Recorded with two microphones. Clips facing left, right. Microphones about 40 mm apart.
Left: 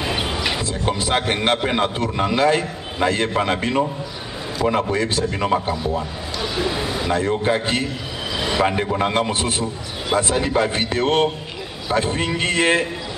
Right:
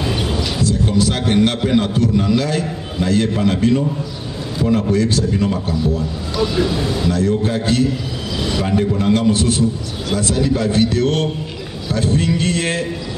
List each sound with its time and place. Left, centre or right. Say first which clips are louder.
0.0 s a man's voice: right 2 dB; left
4.8 s a man's voice: right 4 dB; left
6.3 s a man's voice: right 5 dB; centre